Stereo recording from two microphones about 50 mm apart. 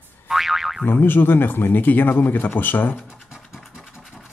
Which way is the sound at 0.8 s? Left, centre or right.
Left.